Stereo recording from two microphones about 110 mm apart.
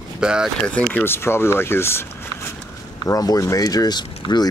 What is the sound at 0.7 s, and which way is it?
Speech, 10° left (ahead or behind).